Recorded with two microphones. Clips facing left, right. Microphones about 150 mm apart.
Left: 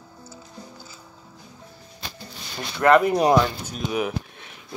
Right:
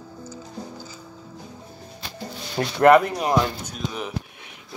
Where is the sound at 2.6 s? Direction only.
75° right (ahead or behind).